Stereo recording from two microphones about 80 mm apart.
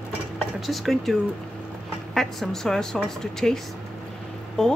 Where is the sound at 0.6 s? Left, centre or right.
Centre.